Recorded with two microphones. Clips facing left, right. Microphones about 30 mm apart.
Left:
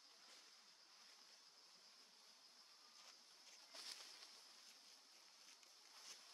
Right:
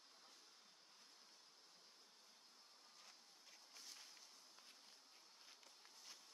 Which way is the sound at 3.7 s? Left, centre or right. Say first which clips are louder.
Left 4 dB; left.